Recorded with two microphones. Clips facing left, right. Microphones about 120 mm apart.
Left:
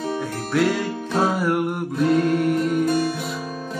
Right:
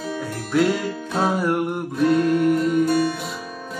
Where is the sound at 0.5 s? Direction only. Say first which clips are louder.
Right 1 dB; centre (ahead or behind).